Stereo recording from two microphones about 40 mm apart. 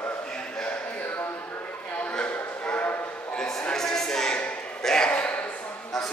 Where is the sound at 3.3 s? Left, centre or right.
Centre.